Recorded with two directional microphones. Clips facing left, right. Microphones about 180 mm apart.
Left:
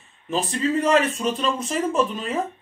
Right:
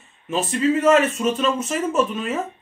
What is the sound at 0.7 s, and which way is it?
Speech, 35° left (ahead or behind).